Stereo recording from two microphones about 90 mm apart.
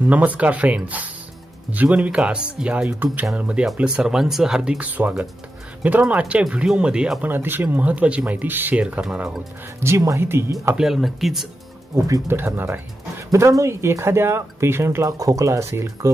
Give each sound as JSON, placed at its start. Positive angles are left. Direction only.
{"t": 0.1, "sound": "speech", "side_deg": -15}
{"t": 2.9, "sound": "speech", "side_deg": -20}
{"t": 7.2, "sound": "speech", "side_deg": -25}
{"t": 9.8, "sound": "speech", "side_deg": -35}
{"t": 10.8, "sound": "speech", "side_deg": 0}
{"t": 12.3, "sound": "speech", "side_deg": -25}
{"t": 13.3, "sound": "speech", "side_deg": -35}